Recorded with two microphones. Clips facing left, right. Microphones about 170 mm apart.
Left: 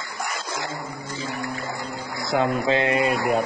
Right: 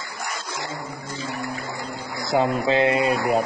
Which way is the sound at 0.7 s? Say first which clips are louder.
Even; 20° right (ahead or behind).